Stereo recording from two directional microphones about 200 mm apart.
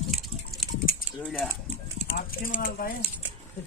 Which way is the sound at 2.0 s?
45° left (ahead or behind).